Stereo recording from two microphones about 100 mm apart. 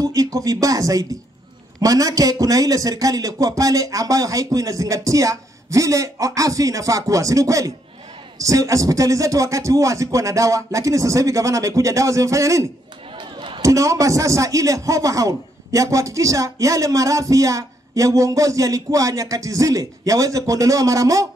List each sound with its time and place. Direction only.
0.0 s a man's voice: 35° right (ahead or behind)
13.2 s a sound: 55° right (ahead or behind)
13.6 s a man's voice: 35° right (ahead or behind)